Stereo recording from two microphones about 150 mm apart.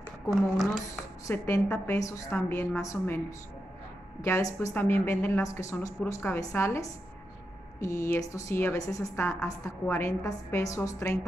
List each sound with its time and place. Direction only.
0.3 s a woman's voice: centre (ahead or behind)
1.2 s a woman's voice: 15° left (ahead or behind)